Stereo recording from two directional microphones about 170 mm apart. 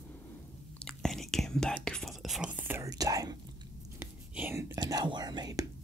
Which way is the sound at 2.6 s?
15° right (ahead or behind).